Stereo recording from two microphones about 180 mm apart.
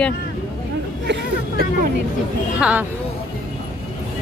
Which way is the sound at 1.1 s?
55° right (ahead or behind).